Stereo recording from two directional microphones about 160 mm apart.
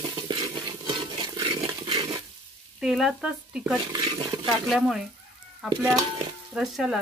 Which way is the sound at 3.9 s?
30° right (ahead or behind).